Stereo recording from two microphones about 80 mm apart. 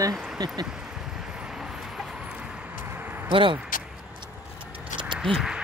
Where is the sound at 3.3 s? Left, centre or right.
Right.